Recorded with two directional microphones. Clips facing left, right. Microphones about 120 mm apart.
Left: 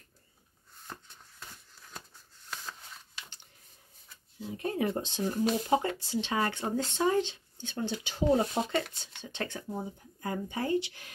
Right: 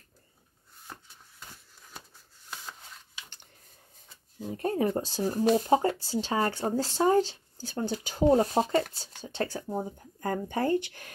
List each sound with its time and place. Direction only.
4.4 s speech: 45° right (ahead or behind)